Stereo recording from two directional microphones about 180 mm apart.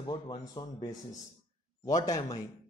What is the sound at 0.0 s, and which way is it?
Speech, 25° left (ahead or behind).